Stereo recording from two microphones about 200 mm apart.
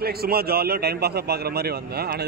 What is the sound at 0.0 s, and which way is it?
A man's voice, 50° right (ahead or behind).